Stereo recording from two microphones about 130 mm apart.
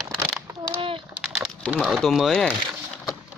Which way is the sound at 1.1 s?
5° right (ahead or behind).